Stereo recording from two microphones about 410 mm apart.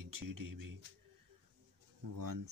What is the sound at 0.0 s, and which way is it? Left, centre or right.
Speech, right.